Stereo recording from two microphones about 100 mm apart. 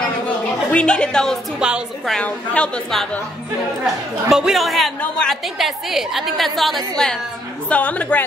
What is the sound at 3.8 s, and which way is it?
A woman's voice, 5° right (ahead or behind).